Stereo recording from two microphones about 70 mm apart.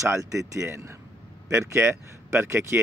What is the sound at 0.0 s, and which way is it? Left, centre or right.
Speech, right.